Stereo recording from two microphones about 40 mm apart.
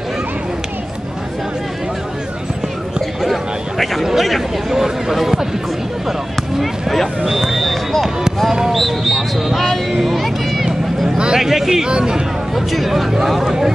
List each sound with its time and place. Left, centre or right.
3.7 s speech: centre
6.6 s speech: centre
7.2 s a sound: centre
11.1 s a sound: right
11.3 s speech: centre
12.5 s speech: centre